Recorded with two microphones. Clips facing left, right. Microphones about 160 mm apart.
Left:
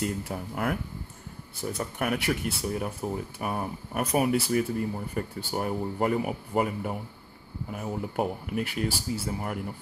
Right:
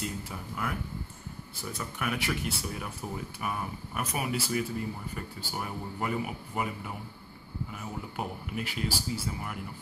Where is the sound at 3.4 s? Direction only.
40° left (ahead or behind).